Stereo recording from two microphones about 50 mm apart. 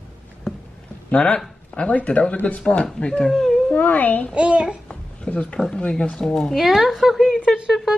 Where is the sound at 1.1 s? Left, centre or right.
Left.